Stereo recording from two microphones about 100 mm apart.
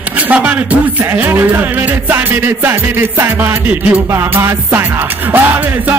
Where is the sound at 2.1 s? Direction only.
20° right (ahead or behind).